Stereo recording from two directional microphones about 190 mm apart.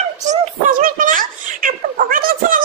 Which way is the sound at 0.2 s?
40° right (ahead or behind).